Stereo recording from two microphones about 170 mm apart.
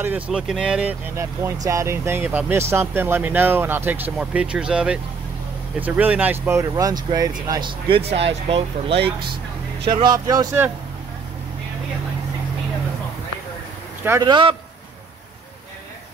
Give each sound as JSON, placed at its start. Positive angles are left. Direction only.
{"t": 0.0, "sound": "speech", "side_deg": -5}
{"t": 1.1, "sound": "speech", "side_deg": -15}
{"t": 14.2, "sound": "speech", "side_deg": -30}